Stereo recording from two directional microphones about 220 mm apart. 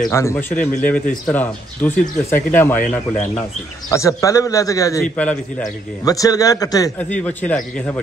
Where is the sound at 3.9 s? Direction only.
15° left (ahead or behind).